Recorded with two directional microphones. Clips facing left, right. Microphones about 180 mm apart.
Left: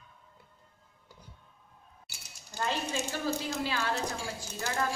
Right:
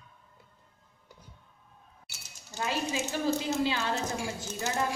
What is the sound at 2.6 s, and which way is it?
Speech, 10° right (ahead or behind).